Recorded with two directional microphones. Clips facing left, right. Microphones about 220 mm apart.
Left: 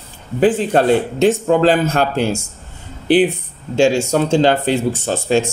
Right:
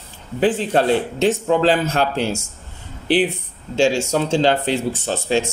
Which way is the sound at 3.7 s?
55° left (ahead or behind).